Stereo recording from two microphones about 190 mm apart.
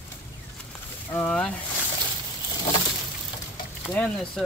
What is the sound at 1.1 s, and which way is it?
Speech, 5° left (ahead or behind).